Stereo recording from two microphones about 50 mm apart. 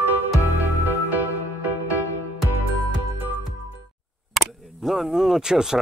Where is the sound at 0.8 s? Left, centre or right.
Right.